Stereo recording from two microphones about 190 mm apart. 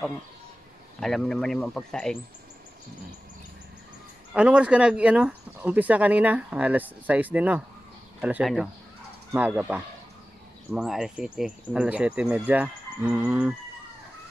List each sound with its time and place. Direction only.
0.9 s speech: centre (ahead or behind)
4.3 s speech: 5° right (ahead or behind)